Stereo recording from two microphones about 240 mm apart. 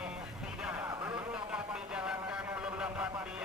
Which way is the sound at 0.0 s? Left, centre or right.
Centre.